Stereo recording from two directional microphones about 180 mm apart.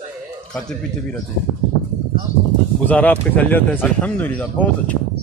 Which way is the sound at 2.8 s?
10° left (ahead or behind).